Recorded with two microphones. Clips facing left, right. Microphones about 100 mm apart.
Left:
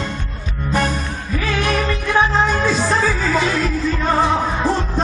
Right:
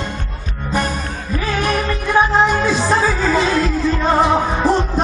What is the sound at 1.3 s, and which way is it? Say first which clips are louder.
Music: right 1 dB; 25° right (ahead or behind).